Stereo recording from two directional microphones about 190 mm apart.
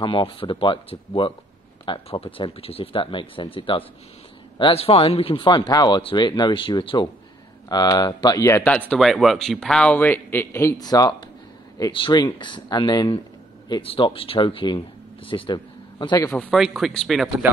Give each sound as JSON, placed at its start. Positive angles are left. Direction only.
{"t": 0.0, "sound": "a man's voice", "side_deg": 25}
{"t": 16.3, "sound": "speech", "side_deg": 0}